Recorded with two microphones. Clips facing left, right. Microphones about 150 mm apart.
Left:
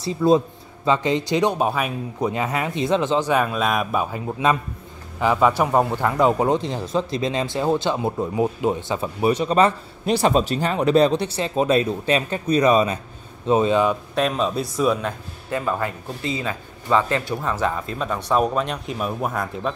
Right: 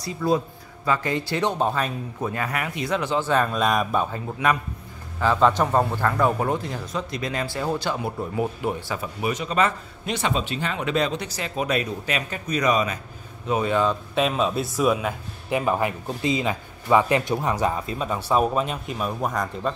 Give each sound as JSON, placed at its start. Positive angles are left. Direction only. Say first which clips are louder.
{"t": 0.0, "sound": "a man's voice", "louder": "left 6 dB", "side_deg": 25}
{"t": 4.4, "sound": "a man's voice", "louder": "left 2 dB", "side_deg": 20}
{"t": 5.2, "sound": "a man's voice", "louder": "left 1 dB", "side_deg": 10}
{"t": 14.1, "sound": "a man's voice", "louder": "left 1 dB", "side_deg": 0}
{"t": 15.6, "sound": "a man's voice", "louder": "right 2 dB", "side_deg": -15}